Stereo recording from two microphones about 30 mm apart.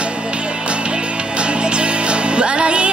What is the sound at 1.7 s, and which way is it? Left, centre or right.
Music, right.